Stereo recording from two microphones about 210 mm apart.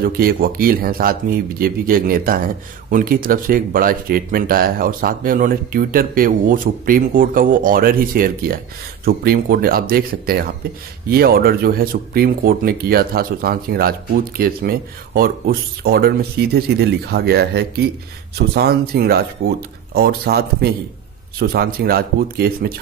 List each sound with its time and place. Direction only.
0.2 s speech: 45° right (ahead or behind)